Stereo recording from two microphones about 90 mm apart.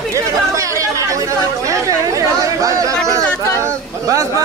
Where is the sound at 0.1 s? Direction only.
35° right (ahead or behind).